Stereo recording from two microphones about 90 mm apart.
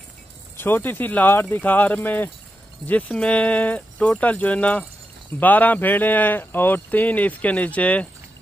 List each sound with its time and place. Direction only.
0.6 s speech: 20° left (ahead or behind)